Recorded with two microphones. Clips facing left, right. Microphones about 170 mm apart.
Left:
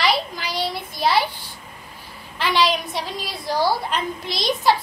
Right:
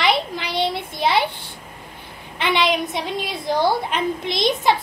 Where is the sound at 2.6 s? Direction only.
20° right (ahead or behind).